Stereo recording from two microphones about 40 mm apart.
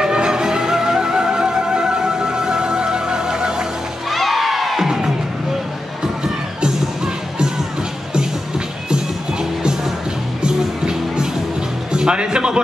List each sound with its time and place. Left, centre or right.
0.0 s music: centre
4.1 s music: centre
4.8 s music: centre
7.3 s music: centre
8.9 s music: centre